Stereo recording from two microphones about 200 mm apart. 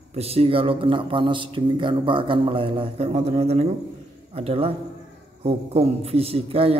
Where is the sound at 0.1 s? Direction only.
30° right (ahead or behind).